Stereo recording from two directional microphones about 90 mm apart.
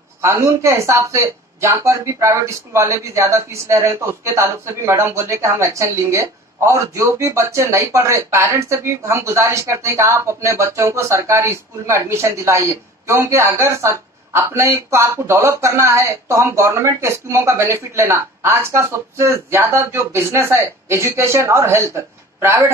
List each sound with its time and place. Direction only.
0.2 s speech: 30° right (ahead or behind)